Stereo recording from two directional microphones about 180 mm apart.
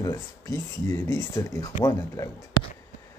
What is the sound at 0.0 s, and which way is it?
Speech, 20° left (ahead or behind).